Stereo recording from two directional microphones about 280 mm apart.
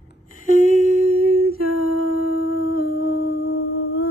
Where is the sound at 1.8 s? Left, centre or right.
Left.